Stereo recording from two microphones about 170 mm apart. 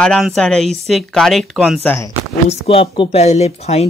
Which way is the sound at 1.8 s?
10° left (ahead or behind).